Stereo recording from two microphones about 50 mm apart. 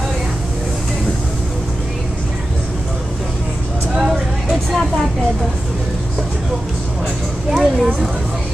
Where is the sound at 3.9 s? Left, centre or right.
Centre.